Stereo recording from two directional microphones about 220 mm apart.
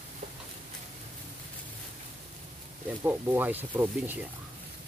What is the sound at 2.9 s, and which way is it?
Speech, 10° right (ahead or behind).